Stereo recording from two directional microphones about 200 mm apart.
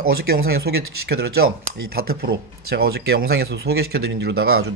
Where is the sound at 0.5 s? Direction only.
55° right (ahead or behind).